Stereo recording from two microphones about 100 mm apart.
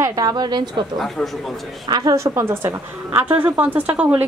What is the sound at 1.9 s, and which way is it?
Speech, 45° right (ahead or behind).